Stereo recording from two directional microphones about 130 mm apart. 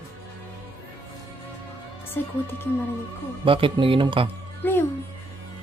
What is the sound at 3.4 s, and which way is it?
Speech, 40° right (ahead or behind).